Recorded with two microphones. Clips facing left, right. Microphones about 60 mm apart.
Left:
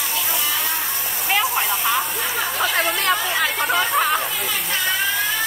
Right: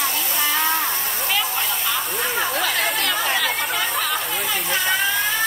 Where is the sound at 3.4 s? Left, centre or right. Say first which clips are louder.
Left 3 dB; left.